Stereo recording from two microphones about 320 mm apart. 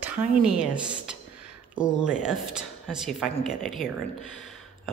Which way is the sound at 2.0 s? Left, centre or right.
Centre.